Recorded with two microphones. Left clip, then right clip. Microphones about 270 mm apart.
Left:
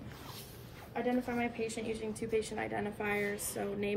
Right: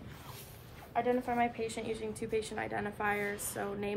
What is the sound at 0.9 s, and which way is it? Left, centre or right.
A woman's voice, right.